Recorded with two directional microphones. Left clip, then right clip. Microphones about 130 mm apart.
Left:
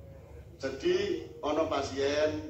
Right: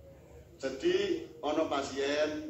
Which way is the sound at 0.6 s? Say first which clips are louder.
Left 1 dB; 25° right (ahead or behind).